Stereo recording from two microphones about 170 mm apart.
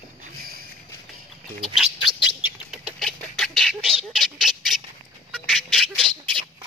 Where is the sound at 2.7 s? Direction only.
Centre (ahead or behind).